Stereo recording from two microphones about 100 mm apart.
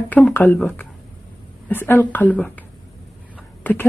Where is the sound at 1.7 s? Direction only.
20° left (ahead or behind).